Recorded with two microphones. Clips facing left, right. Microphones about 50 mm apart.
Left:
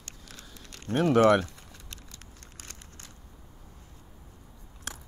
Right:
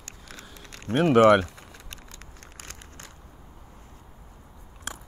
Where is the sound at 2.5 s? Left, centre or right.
Right.